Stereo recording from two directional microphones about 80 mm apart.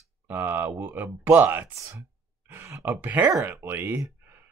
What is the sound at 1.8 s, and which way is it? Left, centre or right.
Speech, right.